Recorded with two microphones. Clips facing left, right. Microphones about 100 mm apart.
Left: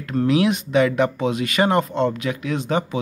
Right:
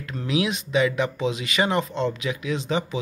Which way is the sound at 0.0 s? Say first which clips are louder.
Left 7 dB; 45° left (ahead or behind).